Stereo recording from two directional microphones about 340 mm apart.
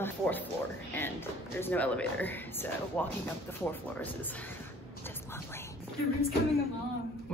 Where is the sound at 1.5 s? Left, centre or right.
Centre.